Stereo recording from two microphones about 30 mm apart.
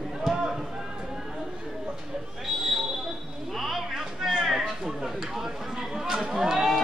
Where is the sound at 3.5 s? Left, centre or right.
Centre.